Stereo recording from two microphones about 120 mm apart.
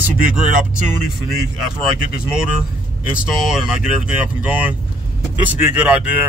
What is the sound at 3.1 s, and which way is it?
Speech, 10° right (ahead or behind).